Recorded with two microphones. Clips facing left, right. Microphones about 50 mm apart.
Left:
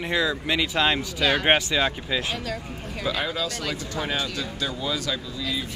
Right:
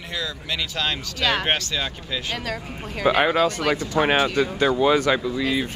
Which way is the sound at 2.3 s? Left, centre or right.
Right.